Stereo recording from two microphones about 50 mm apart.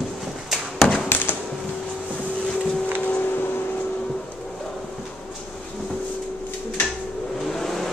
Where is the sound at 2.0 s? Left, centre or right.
Left.